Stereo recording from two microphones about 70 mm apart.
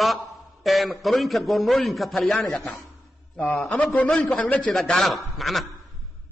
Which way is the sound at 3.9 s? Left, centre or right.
Centre.